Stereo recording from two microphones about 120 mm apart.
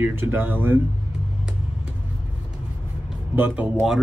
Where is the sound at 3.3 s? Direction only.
15° right (ahead or behind).